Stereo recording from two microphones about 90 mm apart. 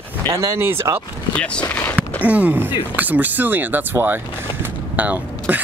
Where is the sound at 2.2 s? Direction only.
15° right (ahead or behind).